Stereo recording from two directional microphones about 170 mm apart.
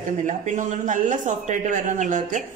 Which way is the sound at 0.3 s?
45° right (ahead or behind).